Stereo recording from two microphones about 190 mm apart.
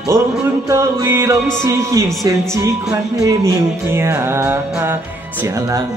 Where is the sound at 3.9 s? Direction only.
15° right (ahead or behind).